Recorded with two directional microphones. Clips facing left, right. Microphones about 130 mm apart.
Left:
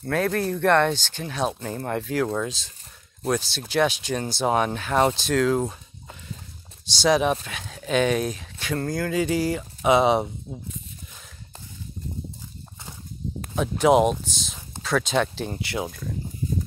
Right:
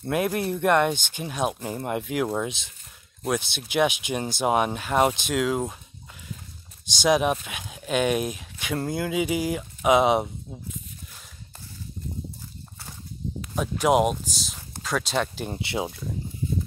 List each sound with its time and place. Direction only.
0.0 s speech: 15° right (ahead or behind)
3.3 s speech: 15° right (ahead or behind)
7.0 s speech: 10° right (ahead or behind)
13.6 s speech: 5° right (ahead or behind)
15.6 s speech: 25° right (ahead or behind)